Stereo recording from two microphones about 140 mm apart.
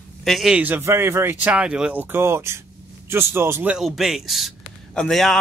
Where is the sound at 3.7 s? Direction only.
Centre (ahead or behind).